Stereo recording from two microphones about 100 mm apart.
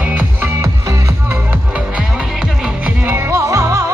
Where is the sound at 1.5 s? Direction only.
10° right (ahead or behind).